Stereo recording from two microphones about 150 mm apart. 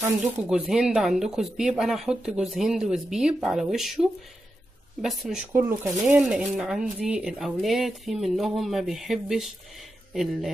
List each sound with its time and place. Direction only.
0.2 s speech: 5° right (ahead or behind)
5.5 s speech: 15° right (ahead or behind)
6.2 s speech: 5° right (ahead or behind)